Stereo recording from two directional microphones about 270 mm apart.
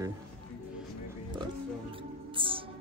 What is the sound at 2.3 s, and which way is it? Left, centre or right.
Music, centre.